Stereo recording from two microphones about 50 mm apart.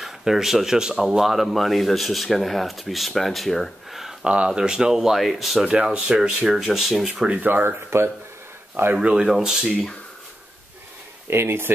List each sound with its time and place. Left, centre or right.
0.0 s speech: centre
4.2 s speech: right; by 5.7 s centre
5.9 s speech: centre
7.4 s speech: right
7.9 s speech: right
8.8 s speech: right
9.1 s speech: centre
11.2 s speech: right